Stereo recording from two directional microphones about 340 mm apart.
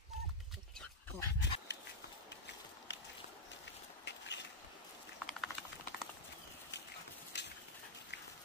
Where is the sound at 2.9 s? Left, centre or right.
Left.